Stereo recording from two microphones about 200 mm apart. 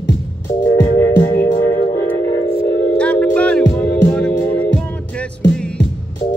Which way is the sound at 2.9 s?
5° left (ahead or behind).